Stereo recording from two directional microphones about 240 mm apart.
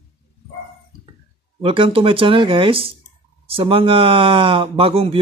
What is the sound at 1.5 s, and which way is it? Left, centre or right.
Speech, right.